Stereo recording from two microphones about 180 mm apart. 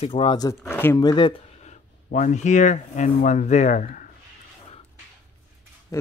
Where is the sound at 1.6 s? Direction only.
40° left (ahead or behind).